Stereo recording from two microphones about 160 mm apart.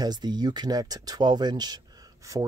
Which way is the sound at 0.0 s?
25° right (ahead or behind).